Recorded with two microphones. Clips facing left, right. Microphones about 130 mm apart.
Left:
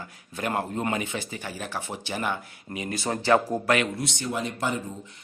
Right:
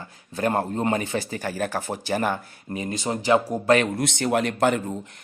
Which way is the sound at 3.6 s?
40° right (ahead or behind).